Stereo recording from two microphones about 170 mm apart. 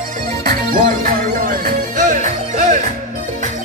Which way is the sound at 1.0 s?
55° right (ahead or behind).